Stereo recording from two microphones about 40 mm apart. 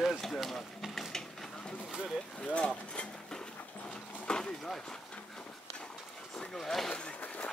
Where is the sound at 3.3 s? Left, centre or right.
Left.